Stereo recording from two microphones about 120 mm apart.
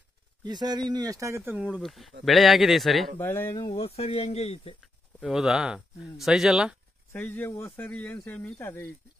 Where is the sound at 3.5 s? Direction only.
50° left (ahead or behind).